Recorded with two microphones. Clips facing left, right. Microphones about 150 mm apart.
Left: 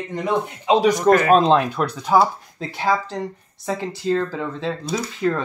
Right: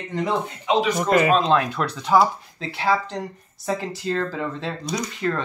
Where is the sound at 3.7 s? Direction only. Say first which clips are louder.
Left 3 dB; centre (ahead or behind).